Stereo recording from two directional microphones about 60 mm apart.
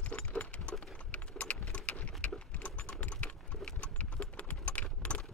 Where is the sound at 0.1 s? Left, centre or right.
Left.